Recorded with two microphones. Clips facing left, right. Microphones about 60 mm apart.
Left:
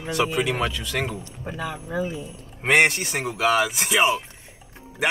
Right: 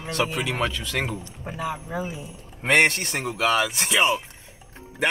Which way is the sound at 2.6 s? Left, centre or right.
Centre.